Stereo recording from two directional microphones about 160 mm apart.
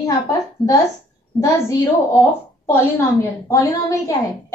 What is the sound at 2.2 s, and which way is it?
A woman's voice, 15° left (ahead or behind).